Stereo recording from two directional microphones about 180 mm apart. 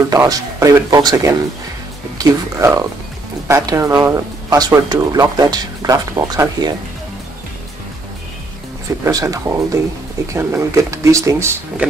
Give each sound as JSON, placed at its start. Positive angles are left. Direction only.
{"t": 0.1, "sound": "speech", "side_deg": -20}
{"t": 9.0, "sound": "speech", "side_deg": -15}